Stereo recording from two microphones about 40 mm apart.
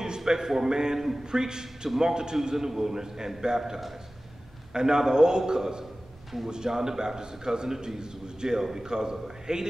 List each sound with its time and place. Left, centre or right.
0.0 s a man's voice: centre